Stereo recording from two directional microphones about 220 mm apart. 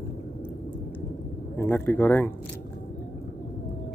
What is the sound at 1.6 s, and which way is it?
Speech, 10° left (ahead or behind).